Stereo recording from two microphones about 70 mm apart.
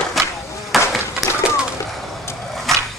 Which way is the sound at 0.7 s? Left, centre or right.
Centre.